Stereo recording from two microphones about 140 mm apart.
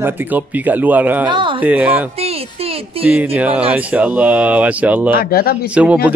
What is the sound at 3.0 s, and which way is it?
Speech, 10° right (ahead or behind).